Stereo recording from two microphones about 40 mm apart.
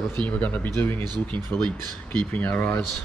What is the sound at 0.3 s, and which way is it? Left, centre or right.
Speech, left.